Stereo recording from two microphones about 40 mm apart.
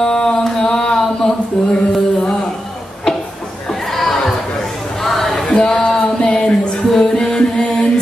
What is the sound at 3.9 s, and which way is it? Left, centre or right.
Chatter, centre.